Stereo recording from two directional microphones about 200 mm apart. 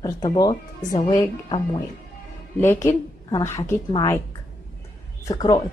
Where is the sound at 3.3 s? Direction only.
15° left (ahead or behind).